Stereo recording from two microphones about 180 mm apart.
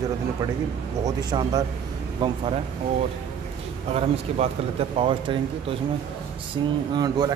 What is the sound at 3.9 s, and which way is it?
Speech, 35° right (ahead or behind).